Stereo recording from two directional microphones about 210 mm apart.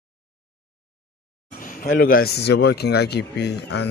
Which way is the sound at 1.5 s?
40° left (ahead or behind).